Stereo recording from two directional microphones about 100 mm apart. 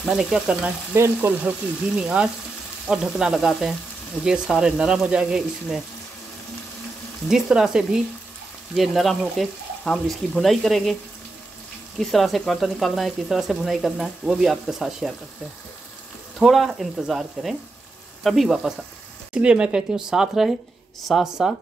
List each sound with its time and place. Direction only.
0.0 s speech: 5° right (ahead or behind)
0.9 s frying: 25° right (ahead or behind)
2.0 s speech: 10° right (ahead or behind)
7.2 s speech: 5° right (ahead or behind)
12.0 s speech: centre (ahead or behind)
16.3 s speech: centre (ahead or behind)